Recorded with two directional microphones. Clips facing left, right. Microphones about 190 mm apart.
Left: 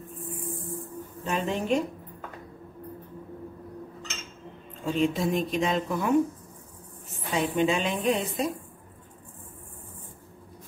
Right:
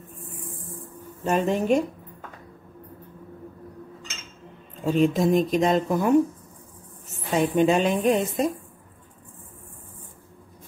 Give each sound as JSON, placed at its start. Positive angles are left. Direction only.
{"t": 1.2, "sound": "speech", "side_deg": -45}
{"t": 4.8, "sound": "speech", "side_deg": -45}
{"t": 7.3, "sound": "speech", "side_deg": -45}